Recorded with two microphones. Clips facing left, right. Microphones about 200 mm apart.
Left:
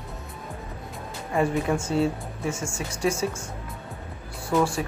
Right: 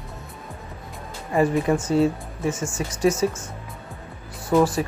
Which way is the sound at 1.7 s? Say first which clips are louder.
Right 4 dB; 5° right (ahead or behind).